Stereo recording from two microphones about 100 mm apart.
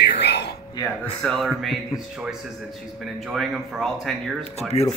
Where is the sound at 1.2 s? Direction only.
5° left (ahead or behind).